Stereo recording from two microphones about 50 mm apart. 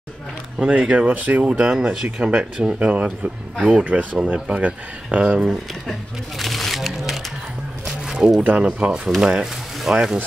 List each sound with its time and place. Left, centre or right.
0.7 s speech: right
1.4 s speech: centre
5.5 s speech: centre
7.8 s a sound: centre
8.6 s speech: right
9.0 s speech: centre